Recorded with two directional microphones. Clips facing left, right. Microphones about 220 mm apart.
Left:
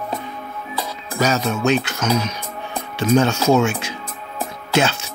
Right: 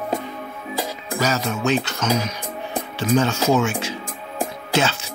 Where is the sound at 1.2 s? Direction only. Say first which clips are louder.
Left 3 dB; 20° left (ahead or behind).